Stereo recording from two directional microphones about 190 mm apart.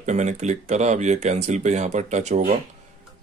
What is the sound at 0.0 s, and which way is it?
Speech, 40° right (ahead or behind).